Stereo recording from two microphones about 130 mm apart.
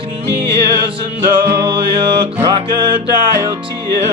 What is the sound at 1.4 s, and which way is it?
Music, 35° right (ahead or behind).